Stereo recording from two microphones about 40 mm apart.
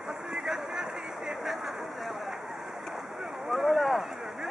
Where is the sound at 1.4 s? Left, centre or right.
Centre.